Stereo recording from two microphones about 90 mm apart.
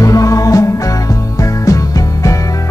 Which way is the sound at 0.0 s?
40° left (ahead or behind).